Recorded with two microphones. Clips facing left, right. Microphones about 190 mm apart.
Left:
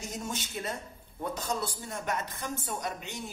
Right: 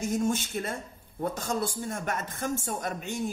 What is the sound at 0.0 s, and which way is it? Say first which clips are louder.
A man's voice: right 10 dB; 50° right (ahead or behind).